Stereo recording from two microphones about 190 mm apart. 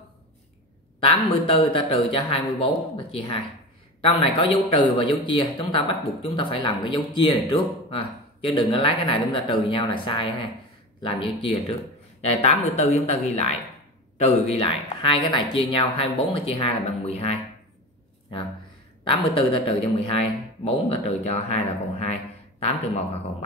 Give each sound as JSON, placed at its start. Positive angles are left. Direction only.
{"t": 1.0, "sound": "speech", "side_deg": 30}
{"t": 19.0, "sound": "a man's voice", "side_deg": 30}